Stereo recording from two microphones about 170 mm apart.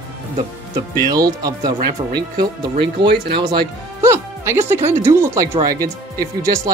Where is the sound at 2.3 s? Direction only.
65° right (ahead or behind).